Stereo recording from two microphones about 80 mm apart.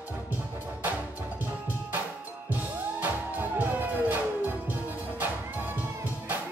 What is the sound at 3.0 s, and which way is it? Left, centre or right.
Music, right.